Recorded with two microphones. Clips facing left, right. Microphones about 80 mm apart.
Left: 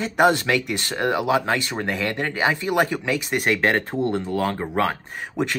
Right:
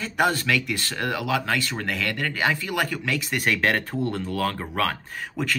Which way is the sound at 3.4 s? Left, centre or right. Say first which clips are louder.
Left 1 dB; left.